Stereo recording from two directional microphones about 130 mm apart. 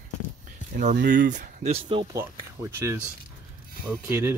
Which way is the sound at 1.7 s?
45° right (ahead or behind).